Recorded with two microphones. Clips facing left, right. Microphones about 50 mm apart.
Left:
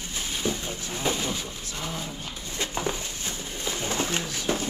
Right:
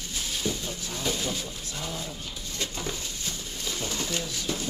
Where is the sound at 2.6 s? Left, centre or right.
Left.